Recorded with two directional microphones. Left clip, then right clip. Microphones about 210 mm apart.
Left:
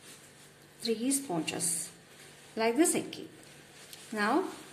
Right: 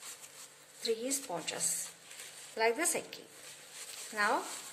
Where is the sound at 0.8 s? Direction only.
15° right (ahead or behind).